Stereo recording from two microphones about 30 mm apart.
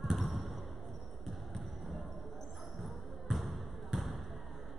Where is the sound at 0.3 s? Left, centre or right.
Centre.